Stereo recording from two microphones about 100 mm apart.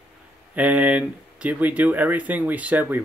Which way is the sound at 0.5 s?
15° right (ahead or behind).